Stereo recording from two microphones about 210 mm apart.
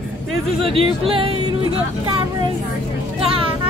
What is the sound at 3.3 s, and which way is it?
Vehicle, 25° right (ahead or behind).